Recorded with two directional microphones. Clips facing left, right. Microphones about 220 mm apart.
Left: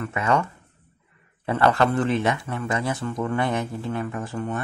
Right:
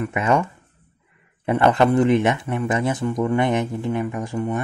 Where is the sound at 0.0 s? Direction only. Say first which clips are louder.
Right 3 dB; 20° right (ahead or behind).